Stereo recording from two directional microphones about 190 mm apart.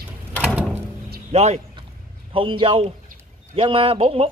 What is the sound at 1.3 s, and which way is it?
Speech, 35° right (ahead or behind).